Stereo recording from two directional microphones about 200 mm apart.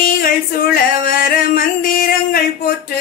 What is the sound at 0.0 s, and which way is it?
Music, 45° left (ahead or behind).